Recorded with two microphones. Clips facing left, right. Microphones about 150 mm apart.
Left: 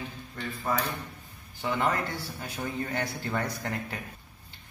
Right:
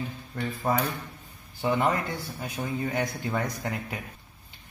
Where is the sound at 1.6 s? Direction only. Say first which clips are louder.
Right 4 dB; 20° right (ahead or behind).